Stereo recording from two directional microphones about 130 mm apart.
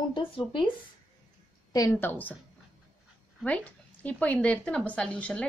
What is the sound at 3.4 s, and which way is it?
A woman's voice, 10° left (ahead or behind).